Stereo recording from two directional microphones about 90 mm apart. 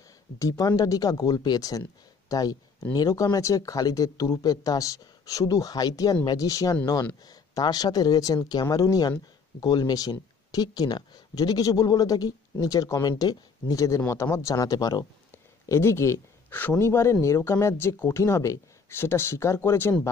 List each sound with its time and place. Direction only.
0.4 s speech: 40° left (ahead or behind)
15.7 s speech: 30° left (ahead or behind)